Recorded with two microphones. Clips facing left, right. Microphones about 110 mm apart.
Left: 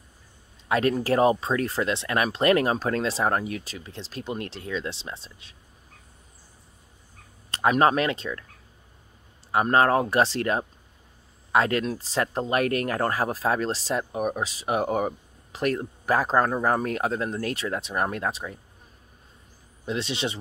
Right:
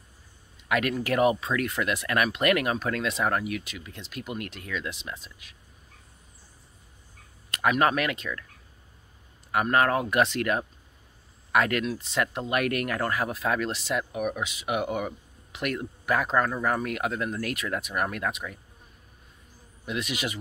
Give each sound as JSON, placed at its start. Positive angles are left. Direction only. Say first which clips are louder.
{"t": 0.7, "sound": "speech", "louder": "left 4 dB", "side_deg": 30}
{"t": 7.5, "sound": "speech", "louder": "left 3 dB", "side_deg": 30}
{"t": 9.5, "sound": "speech", "louder": "left 3 dB", "side_deg": 30}
{"t": 19.8, "sound": "speech", "louder": "left 3 dB", "side_deg": 30}